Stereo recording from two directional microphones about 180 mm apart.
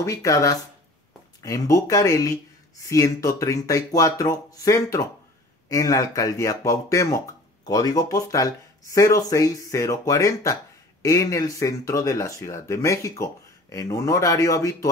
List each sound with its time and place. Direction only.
0.0 s speech: 15° left (ahead or behind)